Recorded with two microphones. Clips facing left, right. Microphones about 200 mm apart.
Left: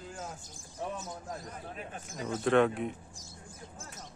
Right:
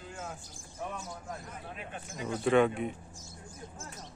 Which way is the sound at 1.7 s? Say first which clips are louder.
Right 1 dB; 40° left (ahead or behind).